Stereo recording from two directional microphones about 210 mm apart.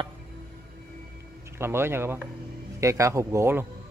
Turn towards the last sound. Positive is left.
turn(degrees=-10)  # may be behind; listen again after turning